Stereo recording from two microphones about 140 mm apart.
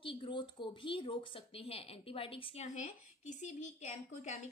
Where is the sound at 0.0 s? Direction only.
35° left (ahead or behind).